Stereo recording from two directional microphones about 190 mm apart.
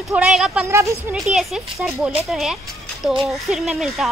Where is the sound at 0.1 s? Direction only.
5° right (ahead or behind).